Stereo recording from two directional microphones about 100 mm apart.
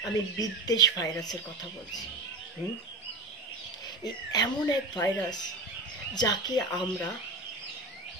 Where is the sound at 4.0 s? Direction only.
45° left (ahead or behind).